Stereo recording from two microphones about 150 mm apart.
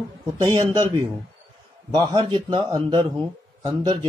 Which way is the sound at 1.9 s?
30° right (ahead or behind).